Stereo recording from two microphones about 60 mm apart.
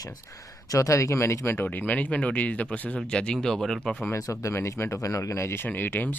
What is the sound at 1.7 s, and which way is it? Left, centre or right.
Speech, left.